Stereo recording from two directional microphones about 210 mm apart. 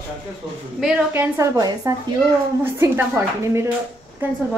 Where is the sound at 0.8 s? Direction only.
10° right (ahead or behind).